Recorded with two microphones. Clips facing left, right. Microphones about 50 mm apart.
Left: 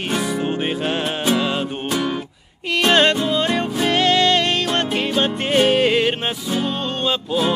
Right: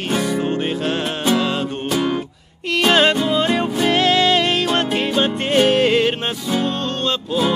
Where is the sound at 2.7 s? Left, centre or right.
Centre.